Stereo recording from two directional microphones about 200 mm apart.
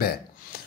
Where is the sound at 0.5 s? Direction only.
50° left (ahead or behind).